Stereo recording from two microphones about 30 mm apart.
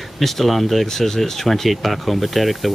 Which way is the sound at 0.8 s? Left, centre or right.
Centre.